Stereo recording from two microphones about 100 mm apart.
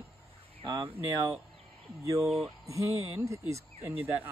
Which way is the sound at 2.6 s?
30° right (ahead or behind).